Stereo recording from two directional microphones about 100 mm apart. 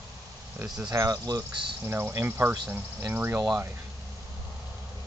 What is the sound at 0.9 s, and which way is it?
Speech, 40° right (ahead or behind).